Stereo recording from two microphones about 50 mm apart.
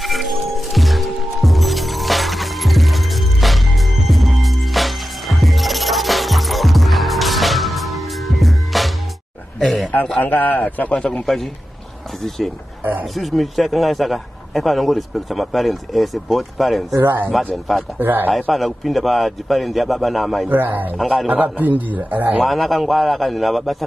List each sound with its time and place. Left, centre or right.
0.0 s music: centre
9.6 s a sound: centre
10.1 s a man's voice: left
10.9 s a man's voice: centre
13.1 s a man's voice: centre
17.0 s a man's voice: right
18.3 s a man's voice: centre
20.4 s a man's voice: right
21.3 s a man's voice: right
22.4 s a man's voice: centre